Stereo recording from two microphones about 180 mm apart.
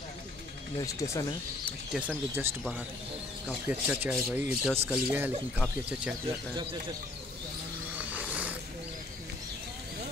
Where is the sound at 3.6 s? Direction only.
10° right (ahead or behind).